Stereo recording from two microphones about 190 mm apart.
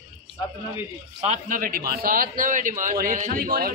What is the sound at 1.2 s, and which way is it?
A man's voice, 40° right (ahead or behind).